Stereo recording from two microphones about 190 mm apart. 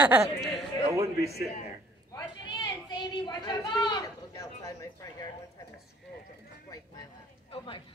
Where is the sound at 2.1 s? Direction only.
20° left (ahead or behind).